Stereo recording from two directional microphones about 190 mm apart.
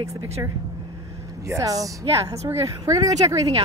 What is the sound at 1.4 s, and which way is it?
A woman's voice, 15° right (ahead or behind).